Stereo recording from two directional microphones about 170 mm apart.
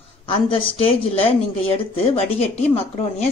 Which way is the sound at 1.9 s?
35° left (ahead or behind).